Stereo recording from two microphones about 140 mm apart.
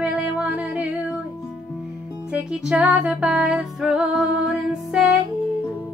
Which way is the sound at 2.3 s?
5° right (ahead or behind).